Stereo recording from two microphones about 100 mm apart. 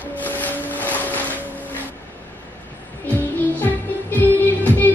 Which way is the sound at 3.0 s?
15° left (ahead or behind).